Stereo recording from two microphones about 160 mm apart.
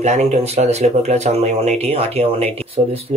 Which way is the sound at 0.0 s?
45° right (ahead or behind).